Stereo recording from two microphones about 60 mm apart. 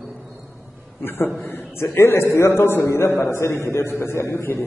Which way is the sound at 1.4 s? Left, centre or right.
Left.